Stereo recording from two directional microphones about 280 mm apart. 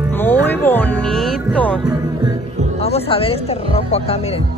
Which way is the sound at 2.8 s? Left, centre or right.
Left.